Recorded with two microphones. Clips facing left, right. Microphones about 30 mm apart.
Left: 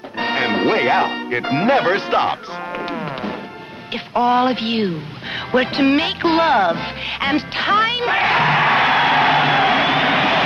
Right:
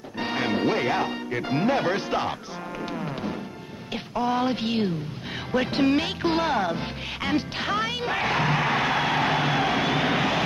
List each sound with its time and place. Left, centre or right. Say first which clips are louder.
0.2 s speech: left 7 dB; left
2.8 s music: left 4 dB; left
3.9 s speech: left 9 dB; left
5.5 s music: left 6 dB; left